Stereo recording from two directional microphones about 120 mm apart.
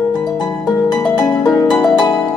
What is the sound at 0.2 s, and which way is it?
Harp, 35° left (ahead or behind).